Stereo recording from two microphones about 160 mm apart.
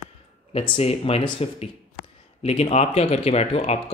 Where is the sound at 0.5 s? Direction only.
40° left (ahead or behind).